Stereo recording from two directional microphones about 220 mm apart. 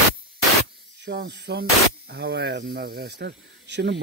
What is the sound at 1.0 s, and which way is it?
Speech, 50° right (ahead or behind).